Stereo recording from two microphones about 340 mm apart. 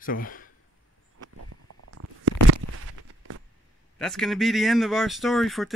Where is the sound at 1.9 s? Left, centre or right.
Right.